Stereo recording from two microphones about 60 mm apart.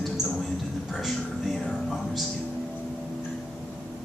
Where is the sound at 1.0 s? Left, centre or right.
Centre.